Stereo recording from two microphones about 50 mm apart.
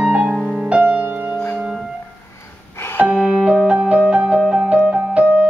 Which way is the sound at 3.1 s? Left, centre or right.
Centre.